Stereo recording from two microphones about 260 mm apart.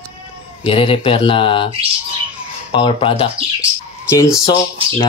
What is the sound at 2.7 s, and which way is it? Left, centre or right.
Speech, centre.